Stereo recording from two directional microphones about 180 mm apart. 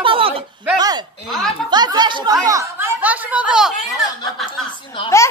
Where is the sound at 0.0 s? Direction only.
30° right (ahead or behind).